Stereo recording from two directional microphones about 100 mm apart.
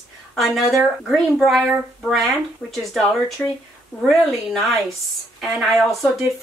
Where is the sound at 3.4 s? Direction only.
15° left (ahead or behind).